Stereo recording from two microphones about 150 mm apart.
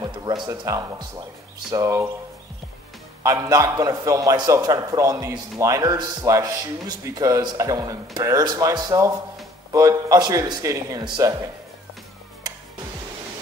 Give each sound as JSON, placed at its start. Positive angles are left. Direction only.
{"t": 0.0, "sound": "a man's voice", "side_deg": -25}
{"t": 3.3, "sound": "a man's voice", "side_deg": -25}